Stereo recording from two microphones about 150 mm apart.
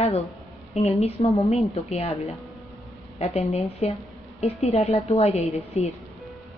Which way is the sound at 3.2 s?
45° left (ahead or behind).